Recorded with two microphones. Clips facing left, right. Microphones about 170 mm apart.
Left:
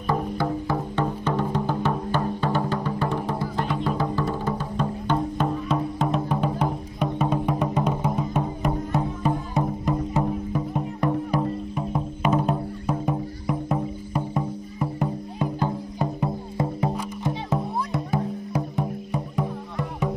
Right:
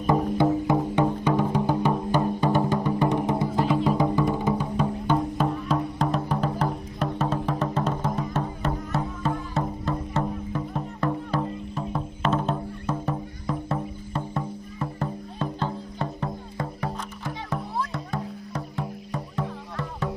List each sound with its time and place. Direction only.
0.0 s music: 20° right (ahead or behind)
3.5 s music: 5° right (ahead or behind)
3.9 s music: 15° right (ahead or behind); by 20.1 s 15° left (ahead or behind)